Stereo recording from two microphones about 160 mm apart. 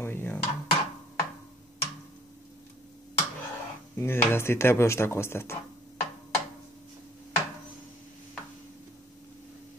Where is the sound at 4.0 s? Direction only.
15° left (ahead or behind).